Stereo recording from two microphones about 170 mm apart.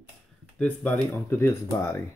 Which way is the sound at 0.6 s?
5° left (ahead or behind).